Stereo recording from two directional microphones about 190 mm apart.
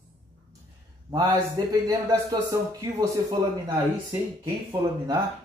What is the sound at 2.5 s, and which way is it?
Speech, 20° right (ahead or behind).